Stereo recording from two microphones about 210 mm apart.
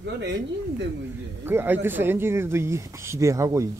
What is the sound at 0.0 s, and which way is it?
Speech, 55° right (ahead or behind).